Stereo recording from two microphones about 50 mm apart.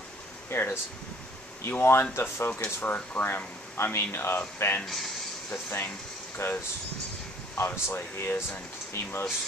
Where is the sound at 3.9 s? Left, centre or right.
Left.